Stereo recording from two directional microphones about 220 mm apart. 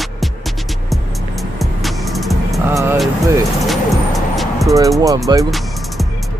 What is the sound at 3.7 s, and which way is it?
Music, centre (ahead or behind).